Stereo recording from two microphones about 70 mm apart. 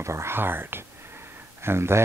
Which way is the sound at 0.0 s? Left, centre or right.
Right.